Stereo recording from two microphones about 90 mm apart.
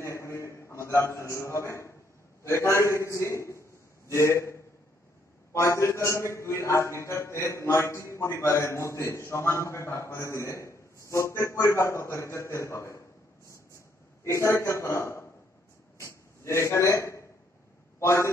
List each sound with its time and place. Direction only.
0.0 s a sound: 30° left (ahead or behind)
2.4 s a man's voice: 30° left (ahead or behind)
14.2 s a man's voice: 30° left (ahead or behind)